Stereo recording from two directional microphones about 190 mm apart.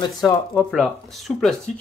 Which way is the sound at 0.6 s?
Centre (ahead or behind).